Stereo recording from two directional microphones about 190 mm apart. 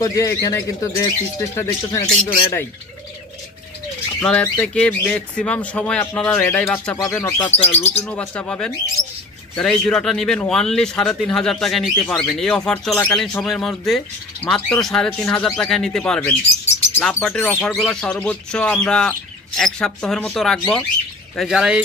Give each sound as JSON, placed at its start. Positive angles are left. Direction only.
{"t": 0.0, "sound": "speech", "side_deg": 15}
{"t": 4.2, "sound": "speech", "side_deg": 5}
{"t": 12.1, "sound": "speech", "side_deg": 10}